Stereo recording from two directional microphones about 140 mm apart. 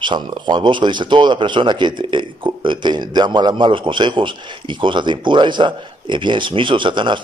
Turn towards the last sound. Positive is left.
turn(degrees=-35)  # may be behind; listen again after turning